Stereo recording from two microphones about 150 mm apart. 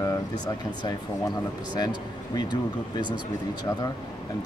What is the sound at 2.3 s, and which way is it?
Speech, 30° left (ahead or behind).